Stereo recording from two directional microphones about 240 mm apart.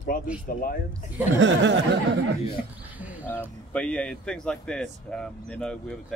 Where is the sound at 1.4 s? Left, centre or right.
Right.